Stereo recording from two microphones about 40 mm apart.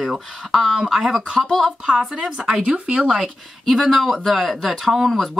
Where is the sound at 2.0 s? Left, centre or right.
Right.